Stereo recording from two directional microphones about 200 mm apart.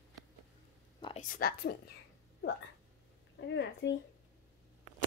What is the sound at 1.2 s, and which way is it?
Speech, 45° left (ahead or behind).